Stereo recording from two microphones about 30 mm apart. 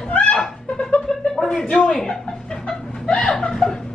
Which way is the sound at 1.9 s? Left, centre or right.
Left.